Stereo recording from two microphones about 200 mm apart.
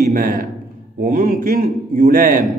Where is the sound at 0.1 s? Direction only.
45° right (ahead or behind).